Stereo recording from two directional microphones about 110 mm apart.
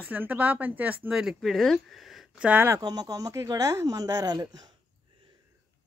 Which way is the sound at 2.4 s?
15° right (ahead or behind).